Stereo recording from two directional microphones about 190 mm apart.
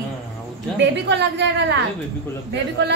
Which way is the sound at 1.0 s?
65° right (ahead or behind).